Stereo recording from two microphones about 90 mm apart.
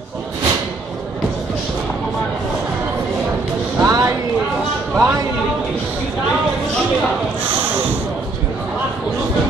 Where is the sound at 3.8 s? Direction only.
40° right (ahead or behind).